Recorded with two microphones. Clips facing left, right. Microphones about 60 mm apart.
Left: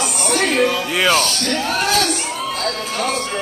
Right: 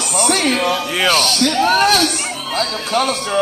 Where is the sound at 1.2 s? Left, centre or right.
Right.